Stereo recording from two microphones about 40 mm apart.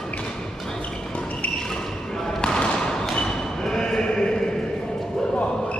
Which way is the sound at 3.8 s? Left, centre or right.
Centre.